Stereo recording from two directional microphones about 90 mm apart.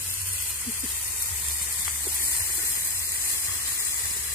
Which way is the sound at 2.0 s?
30° right (ahead or behind).